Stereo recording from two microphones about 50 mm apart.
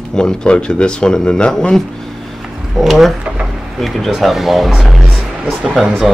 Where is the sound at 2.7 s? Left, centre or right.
Centre.